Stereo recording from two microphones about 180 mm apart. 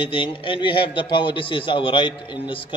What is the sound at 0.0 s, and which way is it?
A man's voice, 30° left (ahead or behind).